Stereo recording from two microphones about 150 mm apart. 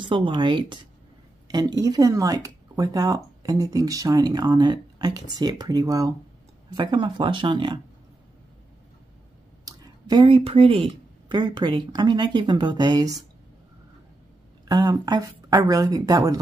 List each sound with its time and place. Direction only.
0.0 s speech: 30° right (ahead or behind)
9.7 s speech: 25° right (ahead or behind)
14.7 s speech: 25° right (ahead or behind)